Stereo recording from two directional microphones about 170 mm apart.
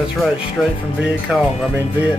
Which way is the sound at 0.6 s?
Centre (ahead or behind).